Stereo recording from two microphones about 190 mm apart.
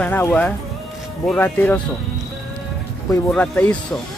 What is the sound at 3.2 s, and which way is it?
Speech, 5° left (ahead or behind).